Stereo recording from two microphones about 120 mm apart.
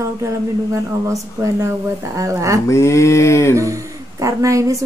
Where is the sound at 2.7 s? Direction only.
25° left (ahead or behind).